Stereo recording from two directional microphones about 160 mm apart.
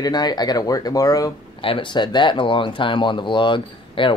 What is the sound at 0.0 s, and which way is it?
Speech, 25° left (ahead or behind).